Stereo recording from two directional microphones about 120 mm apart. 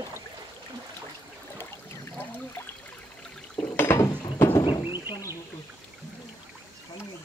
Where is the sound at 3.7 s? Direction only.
20° left (ahead or behind).